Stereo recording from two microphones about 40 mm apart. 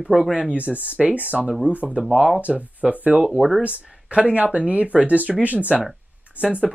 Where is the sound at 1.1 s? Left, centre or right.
Right.